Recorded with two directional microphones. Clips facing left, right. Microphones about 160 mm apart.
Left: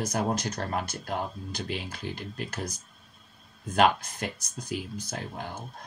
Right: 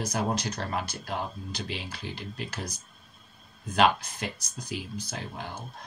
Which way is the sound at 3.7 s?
50° left (ahead or behind).